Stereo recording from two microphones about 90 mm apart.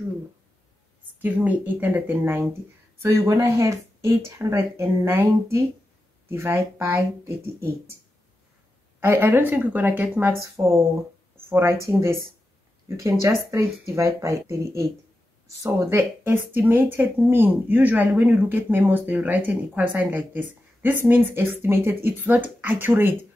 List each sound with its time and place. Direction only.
1.2 s speech: 20° right (ahead or behind)
9.0 s speech: 25° right (ahead or behind)